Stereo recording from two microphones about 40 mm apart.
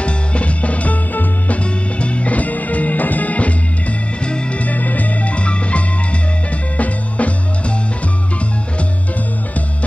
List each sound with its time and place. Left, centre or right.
0.0 s music: left
4.6 s music: left